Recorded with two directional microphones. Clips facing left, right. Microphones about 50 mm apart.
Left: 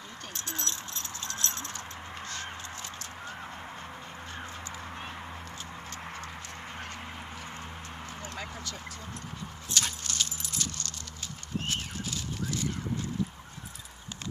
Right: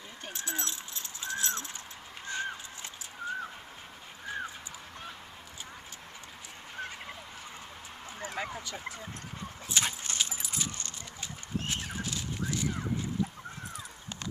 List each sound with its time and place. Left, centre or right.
0.3 s keys jangling: centre
8.2 s a sound: centre
9.8 s keys jangling: centre
11.7 s horse: centre